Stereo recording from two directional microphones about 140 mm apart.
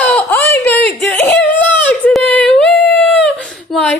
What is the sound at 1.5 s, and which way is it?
Baby cry, 10° left (ahead or behind).